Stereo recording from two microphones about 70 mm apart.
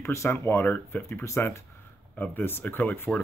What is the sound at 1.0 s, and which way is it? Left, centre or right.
Speech, left.